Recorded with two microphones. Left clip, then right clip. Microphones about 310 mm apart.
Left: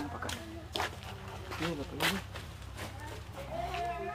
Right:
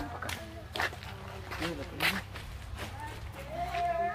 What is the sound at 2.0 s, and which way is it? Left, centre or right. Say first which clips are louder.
Speech: right 2 dB; left.